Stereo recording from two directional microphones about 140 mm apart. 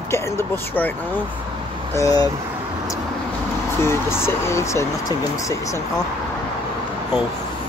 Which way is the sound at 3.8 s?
20° left (ahead or behind).